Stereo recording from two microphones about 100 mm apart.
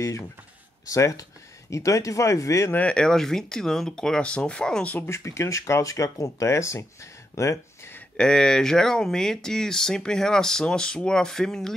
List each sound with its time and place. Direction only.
0.8 s speech: 35° left (ahead or behind)
2.7 s speech: 10° left (ahead or behind)
4.9 s speech: 25° left (ahead or behind)
8.2 s speech: 5° left (ahead or behind)